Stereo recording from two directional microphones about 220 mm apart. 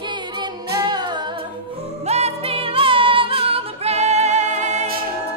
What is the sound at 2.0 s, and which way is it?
Music, 30° right (ahead or behind).